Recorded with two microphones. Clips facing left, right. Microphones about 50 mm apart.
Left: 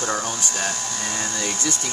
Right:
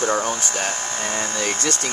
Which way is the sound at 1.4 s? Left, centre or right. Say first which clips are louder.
Right 4 dB; right.